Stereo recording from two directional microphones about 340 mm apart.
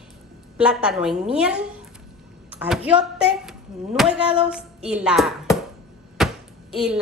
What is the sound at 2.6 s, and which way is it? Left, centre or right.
A woman's voice, centre.